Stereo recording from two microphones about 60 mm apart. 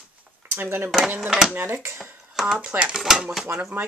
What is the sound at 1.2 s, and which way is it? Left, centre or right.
Speech, centre.